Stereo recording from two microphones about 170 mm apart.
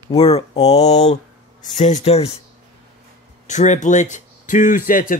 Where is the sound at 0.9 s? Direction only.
40° left (ahead or behind).